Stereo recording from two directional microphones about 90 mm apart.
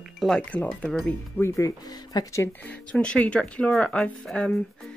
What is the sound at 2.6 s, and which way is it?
Speech, 15° left (ahead or behind).